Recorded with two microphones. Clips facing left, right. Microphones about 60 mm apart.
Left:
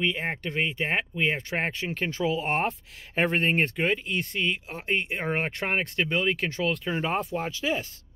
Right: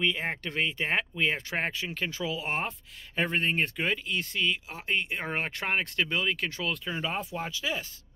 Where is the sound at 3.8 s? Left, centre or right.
Left.